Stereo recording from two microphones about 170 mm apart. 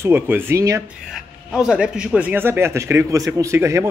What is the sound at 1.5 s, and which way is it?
Speech, 5° right (ahead or behind).